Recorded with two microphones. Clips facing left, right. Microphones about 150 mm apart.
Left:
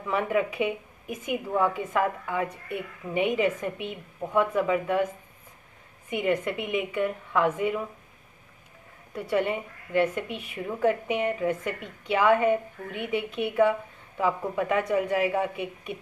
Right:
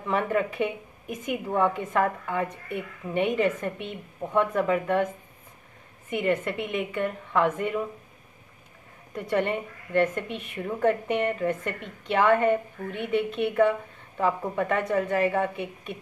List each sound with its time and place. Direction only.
0.1 s a woman's voice: 5° left (ahead or behind)
9.1 s a woman's voice: 5° left (ahead or behind)